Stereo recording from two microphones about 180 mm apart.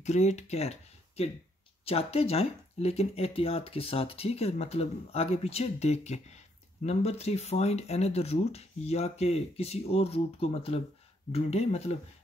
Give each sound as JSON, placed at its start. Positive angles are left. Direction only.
{"t": 0.0, "sound": "speech", "side_deg": 40}